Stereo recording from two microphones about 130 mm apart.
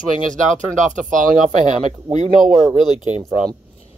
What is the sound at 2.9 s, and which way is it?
Speech, 60° right (ahead or behind).